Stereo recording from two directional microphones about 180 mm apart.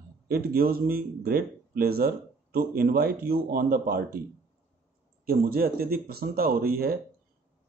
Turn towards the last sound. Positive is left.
turn(degrees=-55)  # may be behind; listen again after turning